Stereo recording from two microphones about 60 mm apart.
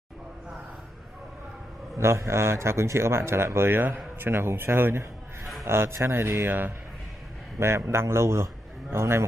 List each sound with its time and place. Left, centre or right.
2.0 s a man's voice: right
7.5 s speech: right